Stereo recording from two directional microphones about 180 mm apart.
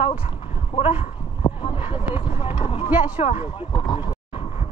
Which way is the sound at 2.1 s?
30° left (ahead or behind).